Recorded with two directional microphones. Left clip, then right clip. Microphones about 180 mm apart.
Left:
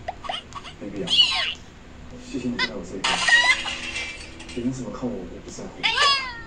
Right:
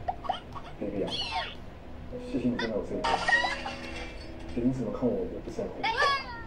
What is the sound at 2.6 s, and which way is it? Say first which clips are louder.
Chicken: left 4 dB; 5° left (ahead or behind).